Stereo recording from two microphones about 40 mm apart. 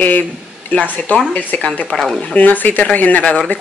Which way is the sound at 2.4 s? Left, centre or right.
Left.